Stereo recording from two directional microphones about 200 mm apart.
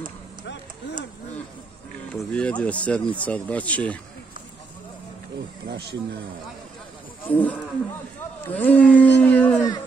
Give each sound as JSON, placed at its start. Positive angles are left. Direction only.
{"t": 0.8, "sound": "a sound", "side_deg": 60}
{"t": 2.1, "sound": "speech", "side_deg": 5}
{"t": 5.7, "sound": "speech", "side_deg": -55}
{"t": 7.2, "sound": "speech", "side_deg": 10}